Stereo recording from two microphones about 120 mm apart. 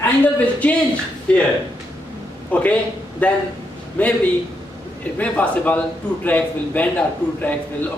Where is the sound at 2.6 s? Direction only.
10° left (ahead or behind).